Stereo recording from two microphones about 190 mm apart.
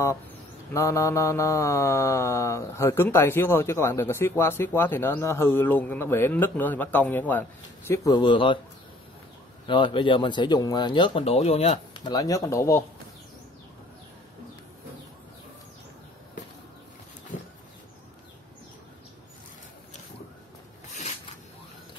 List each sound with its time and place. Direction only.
0.7 s mantra: 15° left (ahead or behind)
9.7 s speech: 25° left (ahead or behind)